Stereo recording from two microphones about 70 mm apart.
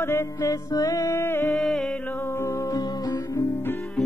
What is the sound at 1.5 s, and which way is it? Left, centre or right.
Music, centre.